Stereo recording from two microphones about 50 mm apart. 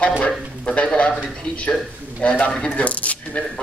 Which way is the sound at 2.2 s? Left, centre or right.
Left.